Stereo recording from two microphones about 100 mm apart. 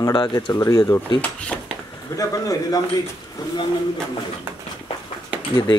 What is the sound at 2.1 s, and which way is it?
Speech, 35° left (ahead or behind).